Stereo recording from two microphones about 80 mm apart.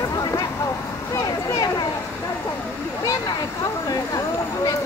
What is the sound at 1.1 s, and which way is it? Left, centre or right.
Speech, left.